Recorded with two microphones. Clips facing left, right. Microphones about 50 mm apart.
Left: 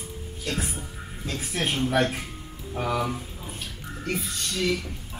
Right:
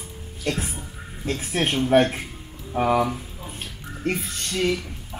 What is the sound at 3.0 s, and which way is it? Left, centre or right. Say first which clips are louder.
Speech: right 2 dB; centre.